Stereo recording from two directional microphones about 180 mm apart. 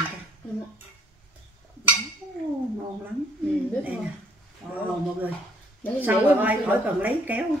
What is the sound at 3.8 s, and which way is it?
Speech, 10° right (ahead or behind).